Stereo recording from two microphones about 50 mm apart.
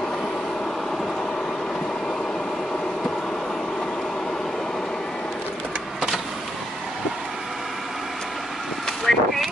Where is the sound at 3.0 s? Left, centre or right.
Left.